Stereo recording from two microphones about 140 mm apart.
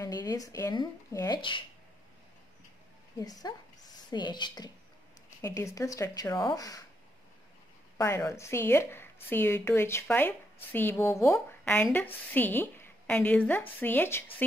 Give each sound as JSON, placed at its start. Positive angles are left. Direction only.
{"t": 0.0, "sound": "speech", "side_deg": 25}
{"t": 3.2, "sound": "speech", "side_deg": 25}
{"t": 8.0, "sound": "a woman's voice", "side_deg": 20}